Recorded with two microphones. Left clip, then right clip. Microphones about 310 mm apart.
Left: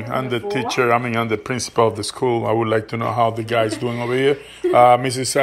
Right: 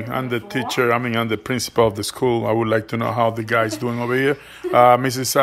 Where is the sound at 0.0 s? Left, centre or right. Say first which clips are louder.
Left 2 dB; centre.